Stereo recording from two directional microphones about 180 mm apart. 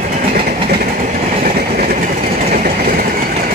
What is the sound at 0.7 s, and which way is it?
Train, 50° right (ahead or behind).